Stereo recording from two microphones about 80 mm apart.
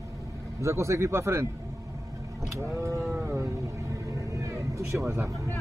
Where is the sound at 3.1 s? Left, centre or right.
Right.